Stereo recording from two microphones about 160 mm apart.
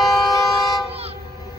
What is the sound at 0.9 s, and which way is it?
Vehicle, 40° right (ahead or behind).